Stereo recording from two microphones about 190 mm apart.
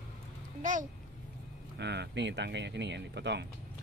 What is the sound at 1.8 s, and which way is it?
Speech, 65° right (ahead or behind).